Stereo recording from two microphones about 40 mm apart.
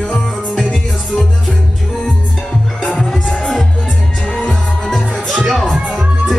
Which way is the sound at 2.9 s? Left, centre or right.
Centre.